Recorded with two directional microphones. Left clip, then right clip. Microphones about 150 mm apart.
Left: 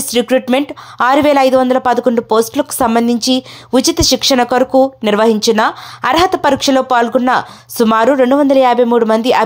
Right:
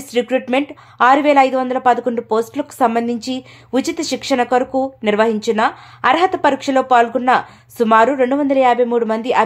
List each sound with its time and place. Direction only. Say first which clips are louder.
0.1 s speech: left 4 dB; 35° left (ahead or behind)